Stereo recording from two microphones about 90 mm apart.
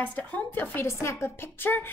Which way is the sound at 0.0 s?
20° left (ahead or behind).